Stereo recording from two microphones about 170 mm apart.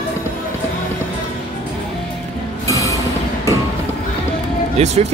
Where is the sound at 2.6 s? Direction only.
20° left (ahead or behind).